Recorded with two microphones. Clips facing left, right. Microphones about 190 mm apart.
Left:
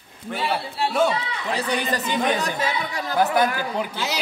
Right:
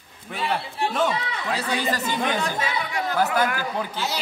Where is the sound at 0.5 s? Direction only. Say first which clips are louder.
Left 1 dB; 10° left (ahead or behind).